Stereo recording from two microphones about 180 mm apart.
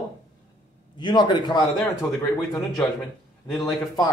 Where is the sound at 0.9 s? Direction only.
25° left (ahead or behind).